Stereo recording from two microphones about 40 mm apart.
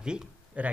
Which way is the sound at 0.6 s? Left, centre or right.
Right.